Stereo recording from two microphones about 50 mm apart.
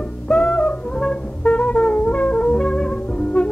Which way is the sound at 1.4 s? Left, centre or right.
Left.